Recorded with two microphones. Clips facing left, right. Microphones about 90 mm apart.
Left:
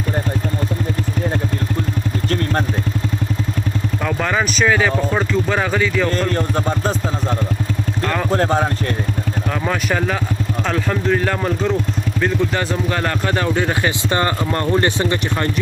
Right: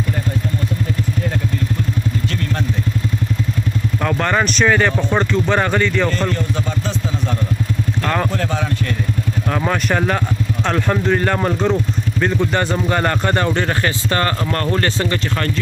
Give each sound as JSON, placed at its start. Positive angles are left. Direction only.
{"t": 4.0, "sound": "speech", "side_deg": 0}
{"t": 8.3, "sound": "speech", "side_deg": 40}
{"t": 9.5, "sound": "speech", "side_deg": 0}
{"t": 14.1, "sound": "speech", "side_deg": 20}